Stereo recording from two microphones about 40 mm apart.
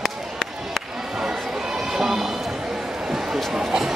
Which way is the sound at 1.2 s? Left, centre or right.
Centre.